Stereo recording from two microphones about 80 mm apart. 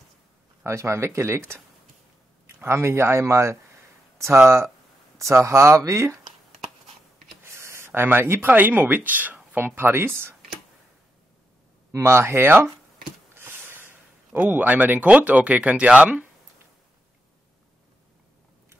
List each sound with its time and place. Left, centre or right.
0.7 s speech: right
7.4 s speech: right
11.9 s speech: right; by 16.3 s centre